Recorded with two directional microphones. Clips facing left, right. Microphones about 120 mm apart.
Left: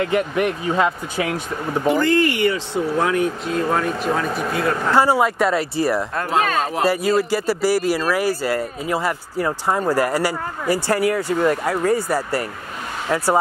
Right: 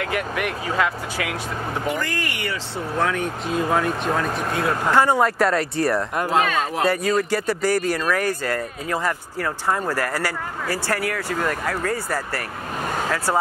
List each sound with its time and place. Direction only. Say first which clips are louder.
0.0 s speech: left 6 dB; 25° left (ahead or behind); by 3.3 s 10° left (ahead or behind)
3.4 s speech: left 1 dB; centre (ahead or behind)
6.4 s speech: left 2 dB; 40° left (ahead or behind)
6.7 s speech: left 2 dB; 5° left (ahead or behind)